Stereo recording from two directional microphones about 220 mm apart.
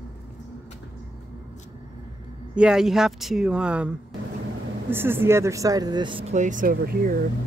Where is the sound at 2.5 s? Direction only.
5° right (ahead or behind); by 7.2 s 40° right (ahead or behind).